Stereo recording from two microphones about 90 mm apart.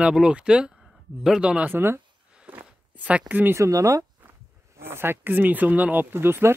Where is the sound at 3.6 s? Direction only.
35° right (ahead or behind).